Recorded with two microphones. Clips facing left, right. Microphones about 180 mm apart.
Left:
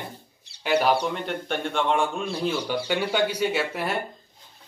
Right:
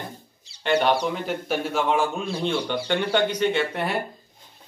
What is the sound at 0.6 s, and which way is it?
A man's voice, 5° left (ahead or behind).